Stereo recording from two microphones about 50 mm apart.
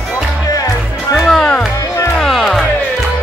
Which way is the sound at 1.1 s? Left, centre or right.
Centre.